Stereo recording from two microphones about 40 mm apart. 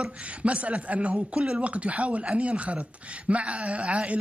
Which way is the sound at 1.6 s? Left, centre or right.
Right.